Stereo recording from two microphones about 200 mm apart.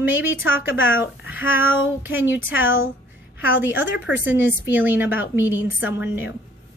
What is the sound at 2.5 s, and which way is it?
Speech, 75° left (ahead or behind).